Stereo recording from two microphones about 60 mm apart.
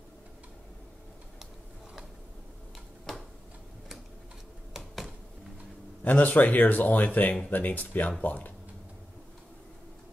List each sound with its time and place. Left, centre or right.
3.1 s tick-tock: centre
4.7 s a sound: centre
6.0 s speech: left